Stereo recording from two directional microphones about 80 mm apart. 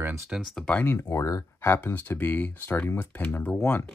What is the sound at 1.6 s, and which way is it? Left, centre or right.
Speech, left.